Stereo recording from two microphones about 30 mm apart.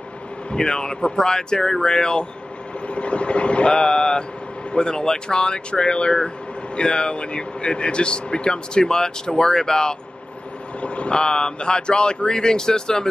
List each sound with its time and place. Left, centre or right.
0.6 s speech: left
1.9 s speech: left
2.9 s speech: left
10.8 s speech: left
11.1 s speech: left